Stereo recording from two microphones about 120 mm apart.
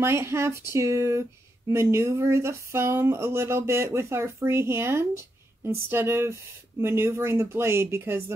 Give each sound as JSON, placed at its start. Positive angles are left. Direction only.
{"t": 0.0, "sound": "speech", "side_deg": -20}